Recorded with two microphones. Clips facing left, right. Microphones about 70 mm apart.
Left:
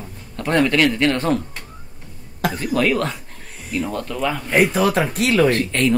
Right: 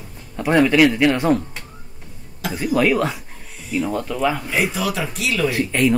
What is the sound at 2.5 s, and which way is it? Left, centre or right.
Speech, centre.